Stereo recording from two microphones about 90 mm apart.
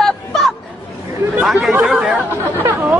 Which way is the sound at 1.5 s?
Centre (ahead or behind).